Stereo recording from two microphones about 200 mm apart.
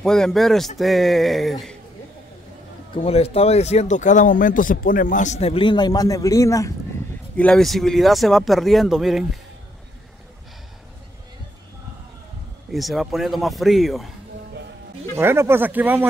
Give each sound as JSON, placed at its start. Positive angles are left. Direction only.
{"t": 0.0, "sound": "speech", "side_deg": 5}
{"t": 3.0, "sound": "speech", "side_deg": 30}
{"t": 7.3, "sound": "speech", "side_deg": 5}
{"t": 12.7, "sound": "speech", "side_deg": 0}
{"t": 15.1, "sound": "speech", "side_deg": -10}